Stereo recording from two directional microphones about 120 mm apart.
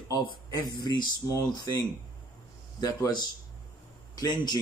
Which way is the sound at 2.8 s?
35° left (ahead or behind).